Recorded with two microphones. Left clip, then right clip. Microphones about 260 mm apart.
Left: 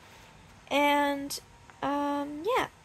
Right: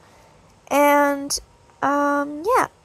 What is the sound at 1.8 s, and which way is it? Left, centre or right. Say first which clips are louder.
Speech: right 11 dB; right.